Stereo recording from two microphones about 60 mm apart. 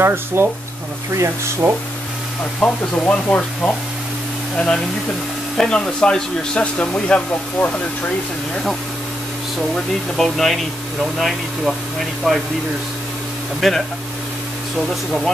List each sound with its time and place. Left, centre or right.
0.0 s speech: right
1.1 s speech: right
2.6 s speech: left
5.6 s speech: centre
10.1 s speech: centre
13.6 s speech: centre